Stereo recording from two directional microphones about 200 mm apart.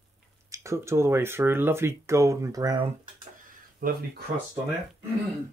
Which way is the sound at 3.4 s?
45° right (ahead or behind).